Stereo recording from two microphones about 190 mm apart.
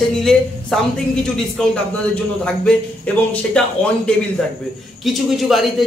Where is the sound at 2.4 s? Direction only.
5° left (ahead or behind).